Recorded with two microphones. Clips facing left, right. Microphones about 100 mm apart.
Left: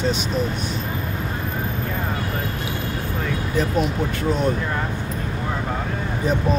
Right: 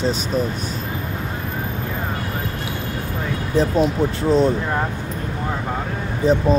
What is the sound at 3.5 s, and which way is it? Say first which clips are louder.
Speech: right 5 dB; 30° right (ahead or behind).